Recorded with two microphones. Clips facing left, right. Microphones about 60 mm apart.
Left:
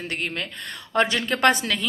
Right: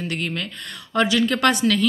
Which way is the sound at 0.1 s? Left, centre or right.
Left.